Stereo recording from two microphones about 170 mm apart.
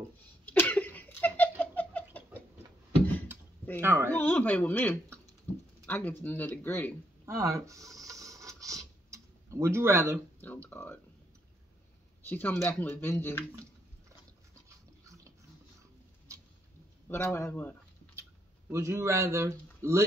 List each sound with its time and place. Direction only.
0.5 s a sound: 10° left (ahead or behind)
3.8 s speech: 15° right (ahead or behind)
4.1 s speech: 10° left (ahead or behind)
7.2 s writing: 20° right (ahead or behind)
10.4 s speech: 10° left (ahead or behind)
12.3 s speech: 10° left (ahead or behind)
15.0 s dog: 20° right (ahead or behind)
17.1 s speech: 15° left (ahead or behind)
18.7 s speech: 15° right (ahead or behind)